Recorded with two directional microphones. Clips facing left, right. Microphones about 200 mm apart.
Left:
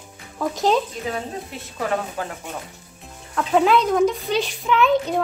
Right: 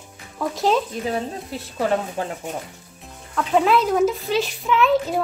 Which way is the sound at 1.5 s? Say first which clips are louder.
Right 4 dB; 30° right (ahead or behind).